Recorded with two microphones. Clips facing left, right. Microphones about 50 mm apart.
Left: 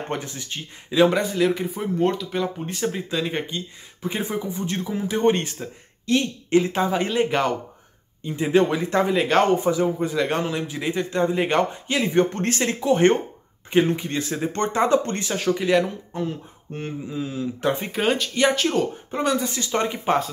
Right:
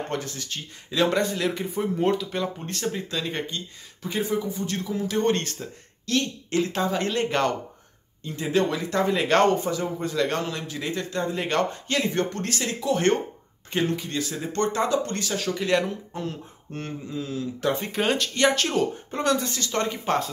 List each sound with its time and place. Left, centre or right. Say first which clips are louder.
0.1 s speech: left 1 dB; left
8.3 s speech: left 5 dB; left
9.1 s speech: even; centre
9.6 s speech: left 6 dB; centre
12.4 s speech: left 5 dB; left
15.6 s speech: even; centre; by 17.9 s left
17.9 s speech: left 2 dB; centre